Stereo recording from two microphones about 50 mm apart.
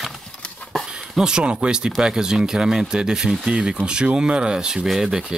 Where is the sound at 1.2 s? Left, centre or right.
Centre.